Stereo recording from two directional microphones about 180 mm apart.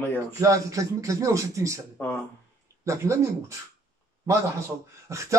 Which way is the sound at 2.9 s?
15° right (ahead or behind).